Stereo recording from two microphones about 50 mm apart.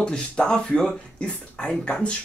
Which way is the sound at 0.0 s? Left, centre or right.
Centre.